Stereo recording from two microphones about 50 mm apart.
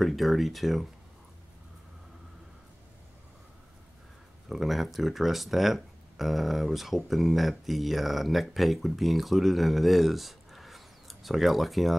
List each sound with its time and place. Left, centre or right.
0.0 s speech: centre
4.5 s speech: centre